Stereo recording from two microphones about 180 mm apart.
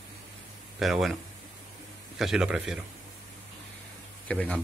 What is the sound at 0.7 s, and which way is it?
Speech, centre (ahead or behind).